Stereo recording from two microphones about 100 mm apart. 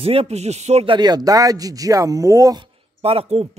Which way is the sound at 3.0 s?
85° right.